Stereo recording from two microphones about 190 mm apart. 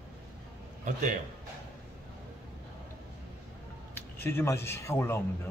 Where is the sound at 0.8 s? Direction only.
40° right (ahead or behind).